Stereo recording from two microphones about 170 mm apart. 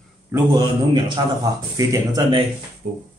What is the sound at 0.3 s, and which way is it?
A man's voice, 25° right (ahead or behind).